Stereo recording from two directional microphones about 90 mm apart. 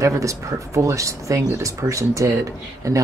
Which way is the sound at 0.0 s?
35° right (ahead or behind).